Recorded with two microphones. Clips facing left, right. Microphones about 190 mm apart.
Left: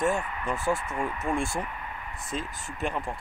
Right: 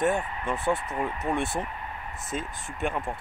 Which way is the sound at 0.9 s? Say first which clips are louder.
Right 1 dB; 20° right (ahead or behind).